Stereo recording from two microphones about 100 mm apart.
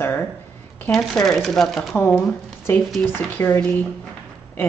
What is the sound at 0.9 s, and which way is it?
Speech, 5° left (ahead or behind).